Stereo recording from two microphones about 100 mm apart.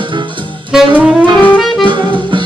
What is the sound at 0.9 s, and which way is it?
Saxophone, 10° right (ahead or behind).